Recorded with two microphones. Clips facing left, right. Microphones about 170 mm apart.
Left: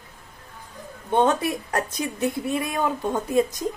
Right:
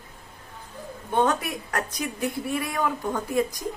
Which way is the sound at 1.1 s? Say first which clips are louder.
Left 3 dB; 25° left (ahead or behind).